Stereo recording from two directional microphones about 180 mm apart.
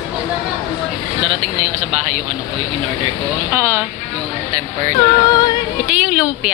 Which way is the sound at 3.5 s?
15° right (ahead or behind).